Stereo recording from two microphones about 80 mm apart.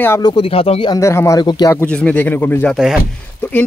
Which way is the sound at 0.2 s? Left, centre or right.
Left.